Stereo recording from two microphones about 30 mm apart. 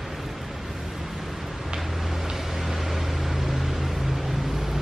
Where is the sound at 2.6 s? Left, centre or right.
Centre.